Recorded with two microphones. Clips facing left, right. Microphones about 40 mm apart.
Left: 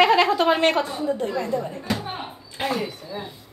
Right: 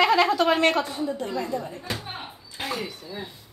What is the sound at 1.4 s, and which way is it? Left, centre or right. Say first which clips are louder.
Speech: left 4 dB; left.